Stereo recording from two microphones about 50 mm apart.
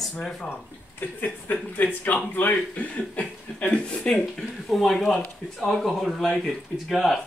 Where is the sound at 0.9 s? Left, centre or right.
Left; by 4.2 s centre.